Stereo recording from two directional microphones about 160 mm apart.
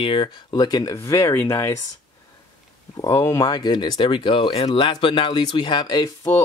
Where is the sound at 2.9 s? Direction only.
20° left (ahead or behind).